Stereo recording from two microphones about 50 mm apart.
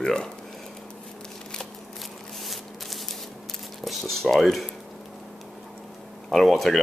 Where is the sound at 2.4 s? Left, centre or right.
Centre.